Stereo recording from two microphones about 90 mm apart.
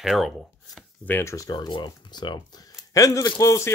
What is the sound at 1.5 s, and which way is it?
Speech, 60° left (ahead or behind).